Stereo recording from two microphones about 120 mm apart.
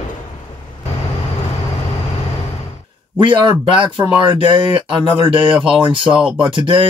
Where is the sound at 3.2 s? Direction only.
40° right (ahead or behind).